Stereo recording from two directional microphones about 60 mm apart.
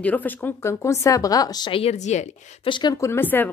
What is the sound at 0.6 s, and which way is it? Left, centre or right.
Speech, left.